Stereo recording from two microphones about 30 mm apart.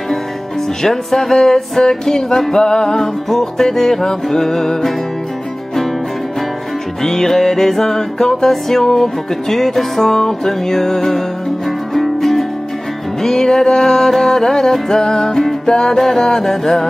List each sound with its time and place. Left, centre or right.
0.8 s speech: centre
2.2 s music: centre
2.5 s speech: left
3.3 s music: centre
7.0 s music: centre
15.7 s speech: left
16.2 s music: centre